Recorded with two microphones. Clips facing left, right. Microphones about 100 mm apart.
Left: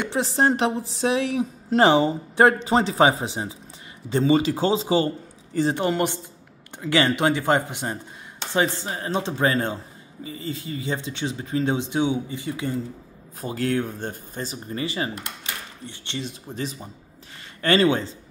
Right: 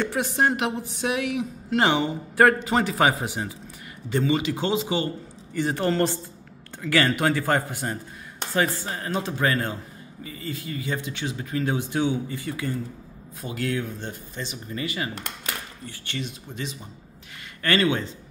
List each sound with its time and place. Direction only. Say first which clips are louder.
0.0 s a woman's voice: left 2 dB; 25° left (ahead or behind)
5.8 s a man's voice: even; 15° left (ahead or behind)
13.4 s a woman's voice: left 4 dB; 35° left (ahead or behind)